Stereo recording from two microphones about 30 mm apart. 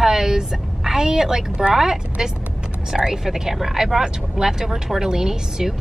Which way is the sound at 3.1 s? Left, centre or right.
Centre.